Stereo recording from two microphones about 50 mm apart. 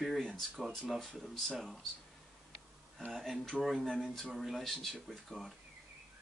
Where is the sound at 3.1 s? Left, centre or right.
Centre.